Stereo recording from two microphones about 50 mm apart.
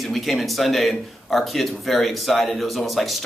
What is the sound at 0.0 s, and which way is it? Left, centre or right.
A man's voice, centre.